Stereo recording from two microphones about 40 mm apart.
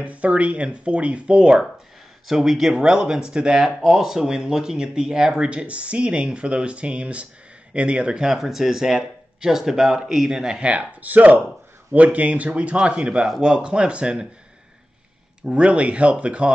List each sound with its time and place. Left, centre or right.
0.0 s speech: right
2.2 s speech: centre; by 8.3 s right
8.3 s speech: centre
10.6 s speech: right
11.0 s speech: right
15.5 s speech: right